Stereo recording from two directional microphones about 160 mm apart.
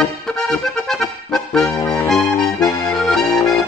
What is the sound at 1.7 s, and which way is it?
Accordion, 20° left (ahead or behind).